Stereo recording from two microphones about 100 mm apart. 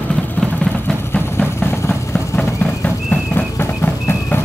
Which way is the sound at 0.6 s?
10° left (ahead or behind).